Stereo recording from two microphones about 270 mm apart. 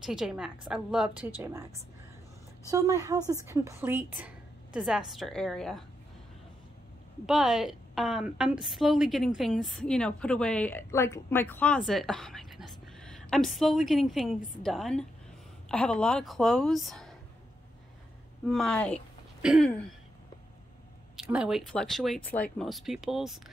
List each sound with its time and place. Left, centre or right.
0.0 s a woman's voice: centre
2.7 s a woman's voice: centre
7.2 s a woman's voice: centre
18.4 s a woman's voice: centre
21.2 s a woman's voice: centre